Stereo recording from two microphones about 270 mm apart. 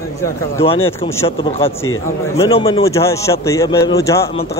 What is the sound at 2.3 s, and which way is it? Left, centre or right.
A man's voice, centre.